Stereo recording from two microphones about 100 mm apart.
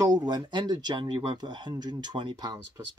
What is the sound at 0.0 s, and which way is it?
Speech, 45° right (ahead or behind).